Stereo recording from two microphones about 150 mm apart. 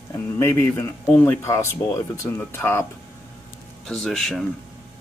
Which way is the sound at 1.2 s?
15° left (ahead or behind).